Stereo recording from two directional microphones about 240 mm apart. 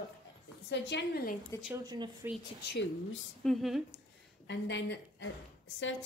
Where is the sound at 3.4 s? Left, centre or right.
Centre.